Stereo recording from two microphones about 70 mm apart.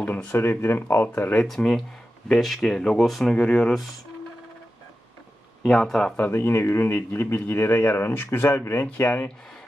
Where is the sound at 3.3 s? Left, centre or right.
Centre.